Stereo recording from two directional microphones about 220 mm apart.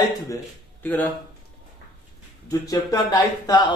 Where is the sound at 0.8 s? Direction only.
5° left (ahead or behind).